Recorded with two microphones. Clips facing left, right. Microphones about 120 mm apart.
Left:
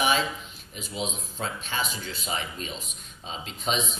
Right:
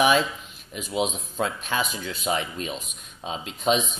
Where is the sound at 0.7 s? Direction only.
55° right (ahead or behind).